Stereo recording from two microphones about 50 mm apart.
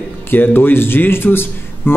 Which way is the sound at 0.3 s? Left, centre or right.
Left.